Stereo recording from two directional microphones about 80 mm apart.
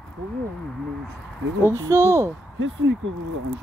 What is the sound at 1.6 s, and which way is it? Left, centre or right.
Speech, right.